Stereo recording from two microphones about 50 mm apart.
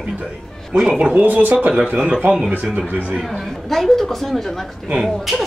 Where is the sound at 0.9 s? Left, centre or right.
Right.